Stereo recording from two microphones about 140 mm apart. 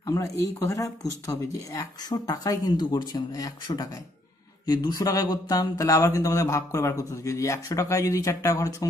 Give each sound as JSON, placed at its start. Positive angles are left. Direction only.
{"t": 0.0, "sound": "speech", "side_deg": 25}